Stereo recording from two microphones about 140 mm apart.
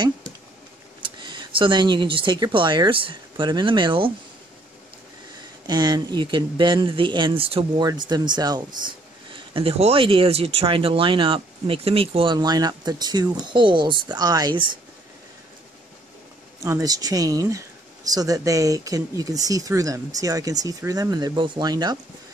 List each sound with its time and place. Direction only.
1.0 s speech: 35° right (ahead or behind)
5.7 s speech: 30° right (ahead or behind)
7.8 s speech: 30° right (ahead or behind)
16.6 s speech: 25° right (ahead or behind)